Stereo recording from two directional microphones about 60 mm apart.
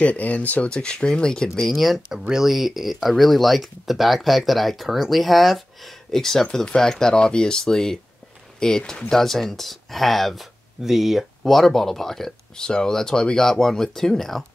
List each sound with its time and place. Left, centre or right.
0.0 s speech: left
1.5 s speech: centre